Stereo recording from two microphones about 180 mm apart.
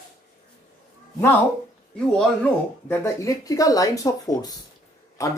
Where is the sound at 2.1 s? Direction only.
5° left (ahead or behind).